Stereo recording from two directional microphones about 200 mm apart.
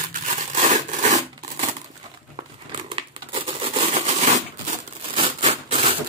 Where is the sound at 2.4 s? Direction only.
30° right (ahead or behind).